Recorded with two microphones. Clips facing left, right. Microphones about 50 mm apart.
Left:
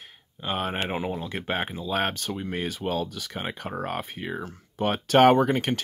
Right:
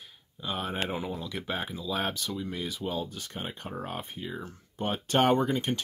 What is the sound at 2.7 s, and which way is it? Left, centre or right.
Speech, left.